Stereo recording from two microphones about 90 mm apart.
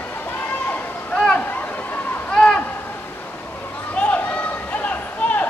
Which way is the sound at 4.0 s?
15° left (ahead or behind).